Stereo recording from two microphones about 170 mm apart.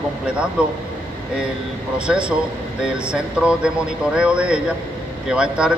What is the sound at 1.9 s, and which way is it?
A man's voice, 5° right (ahead or behind).